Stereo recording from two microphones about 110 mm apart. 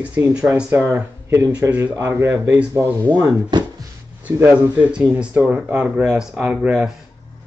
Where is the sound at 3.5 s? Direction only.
40° right (ahead or behind).